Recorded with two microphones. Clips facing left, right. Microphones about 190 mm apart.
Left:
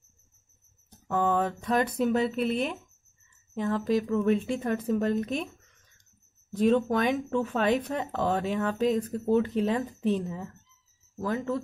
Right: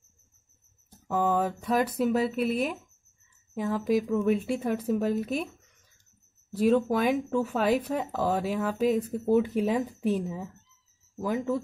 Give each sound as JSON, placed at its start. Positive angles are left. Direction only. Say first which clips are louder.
{"t": 0.8, "sound": "speech", "louder": "even", "side_deg": -10}
{"t": 6.5, "sound": "speech", "louder": "even", "side_deg": -5}